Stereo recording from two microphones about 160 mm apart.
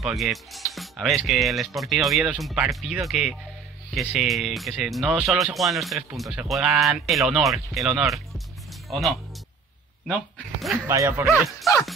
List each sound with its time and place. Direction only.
0.0 s speech: centre (ahead or behind)
10.9 s speech: 15° right (ahead or behind)